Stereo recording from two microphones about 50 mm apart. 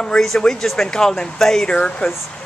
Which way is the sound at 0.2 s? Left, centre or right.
Centre.